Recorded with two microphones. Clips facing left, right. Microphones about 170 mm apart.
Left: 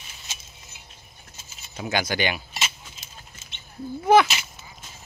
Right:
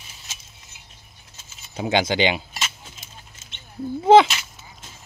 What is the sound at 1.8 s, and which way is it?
Speech, 20° right (ahead or behind).